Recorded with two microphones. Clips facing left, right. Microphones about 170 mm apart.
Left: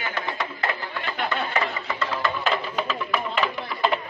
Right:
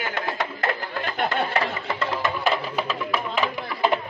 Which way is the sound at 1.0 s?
45° right (ahead or behind).